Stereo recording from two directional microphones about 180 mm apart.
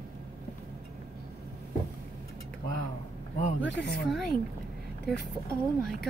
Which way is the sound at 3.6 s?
75° left (ahead or behind).